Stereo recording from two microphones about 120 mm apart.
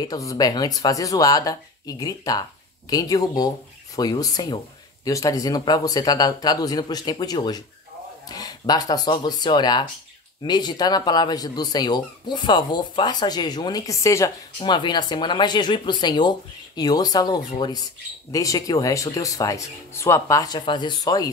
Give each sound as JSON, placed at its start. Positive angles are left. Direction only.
{"t": 0.0, "sound": "speech", "side_deg": 30}
{"t": 14.6, "sound": "speech", "side_deg": 40}